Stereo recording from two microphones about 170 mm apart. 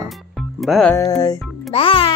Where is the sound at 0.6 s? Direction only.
Centre (ahead or behind).